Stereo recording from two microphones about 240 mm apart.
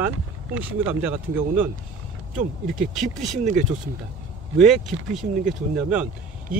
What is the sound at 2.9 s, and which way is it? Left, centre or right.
Speech, centre.